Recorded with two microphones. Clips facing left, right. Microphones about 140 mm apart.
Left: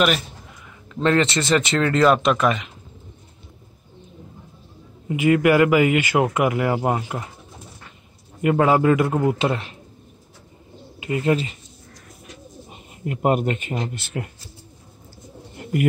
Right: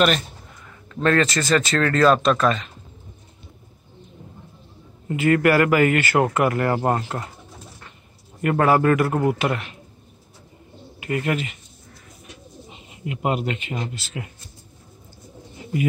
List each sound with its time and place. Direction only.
0.9 s speech: 20° left (ahead or behind)
5.0 s a man's voice: 15° left (ahead or behind)
8.4 s a man's voice: 15° left (ahead or behind)
11.0 s speech: 20° left (ahead or behind)
12.6 s a man's voice: 45° left (ahead or behind)
14.0 s a man's voice: 60° left (ahead or behind)
15.5 s pigeon: 60° left (ahead or behind)